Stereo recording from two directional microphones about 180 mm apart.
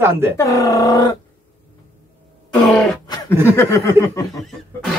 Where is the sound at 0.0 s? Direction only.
10° right (ahead or behind).